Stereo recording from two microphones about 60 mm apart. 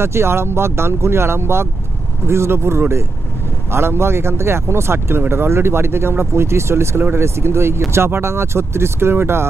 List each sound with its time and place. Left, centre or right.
0.0 s speech: right